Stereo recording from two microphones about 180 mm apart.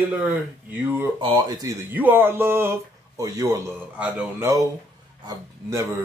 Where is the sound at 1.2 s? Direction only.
25° right (ahead or behind).